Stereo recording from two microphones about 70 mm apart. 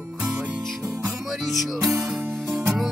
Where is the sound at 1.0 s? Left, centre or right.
Centre.